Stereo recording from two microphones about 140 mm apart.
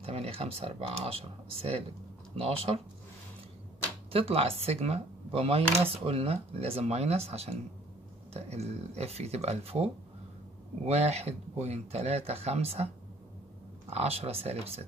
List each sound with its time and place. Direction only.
0.0 s speech: 45° right (ahead or behind)
4.1 s speech: 45° right (ahead or behind)
10.9 s speech: 50° right (ahead or behind)